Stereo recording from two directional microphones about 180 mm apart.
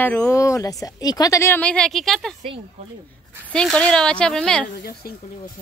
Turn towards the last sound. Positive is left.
turn(degrees=60)  # may be behind; listen again after turning